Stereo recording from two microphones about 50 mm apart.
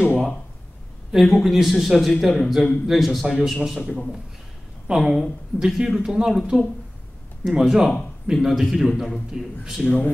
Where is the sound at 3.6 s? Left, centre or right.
Centre.